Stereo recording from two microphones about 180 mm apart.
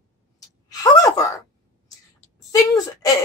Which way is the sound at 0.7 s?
20° left (ahead or behind).